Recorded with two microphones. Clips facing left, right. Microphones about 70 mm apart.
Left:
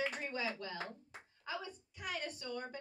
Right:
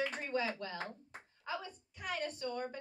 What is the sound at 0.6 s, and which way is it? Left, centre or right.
A woman's voice, right.